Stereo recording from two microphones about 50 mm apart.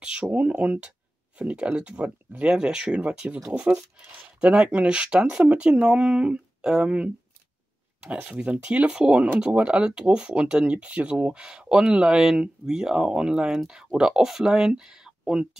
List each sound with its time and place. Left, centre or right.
0.0 s speech: right
2.4 s speech: centre
8.3 s speech: right